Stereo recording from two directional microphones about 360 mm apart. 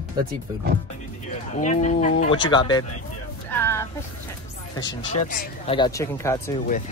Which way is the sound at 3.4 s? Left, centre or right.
Centre.